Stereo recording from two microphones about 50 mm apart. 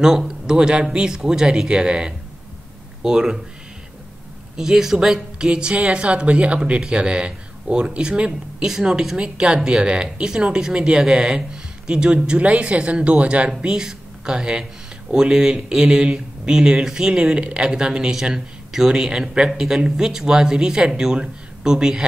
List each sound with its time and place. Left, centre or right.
0.0 s a man's voice: centre
4.6 s speech: centre; by 13.5 s right
13.6 s speech: centre